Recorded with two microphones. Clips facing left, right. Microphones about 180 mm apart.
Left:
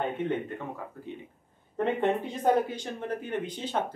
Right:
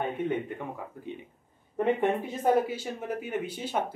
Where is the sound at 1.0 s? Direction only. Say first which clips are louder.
Right 1 dB; 15° right (ahead or behind).